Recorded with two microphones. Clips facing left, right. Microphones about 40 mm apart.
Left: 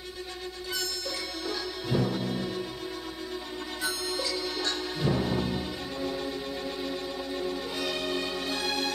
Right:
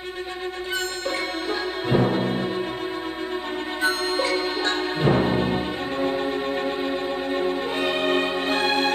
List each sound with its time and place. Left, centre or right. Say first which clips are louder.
1.5 s music: right 7 dB; right
3.8 s music: right 10 dB; right